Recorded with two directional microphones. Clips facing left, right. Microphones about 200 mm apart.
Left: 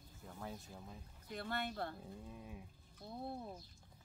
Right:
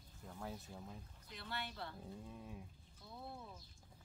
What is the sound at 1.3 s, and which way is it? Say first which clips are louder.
Speech: left 6 dB; 50° left (ahead or behind).